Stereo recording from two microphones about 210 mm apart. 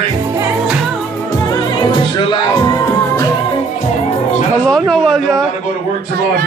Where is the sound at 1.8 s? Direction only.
20° left (ahead or behind).